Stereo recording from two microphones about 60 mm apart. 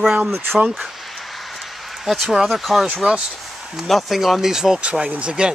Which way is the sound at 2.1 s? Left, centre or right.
Centre.